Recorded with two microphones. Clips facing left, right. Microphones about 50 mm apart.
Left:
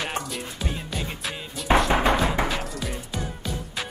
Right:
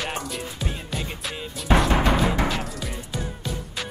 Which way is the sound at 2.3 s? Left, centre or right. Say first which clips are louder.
Even; centre.